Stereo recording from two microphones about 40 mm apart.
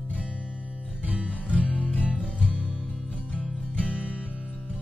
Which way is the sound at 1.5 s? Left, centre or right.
Left.